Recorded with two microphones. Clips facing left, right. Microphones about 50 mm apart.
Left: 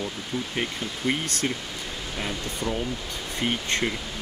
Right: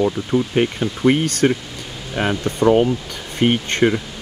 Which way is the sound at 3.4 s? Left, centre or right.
Right.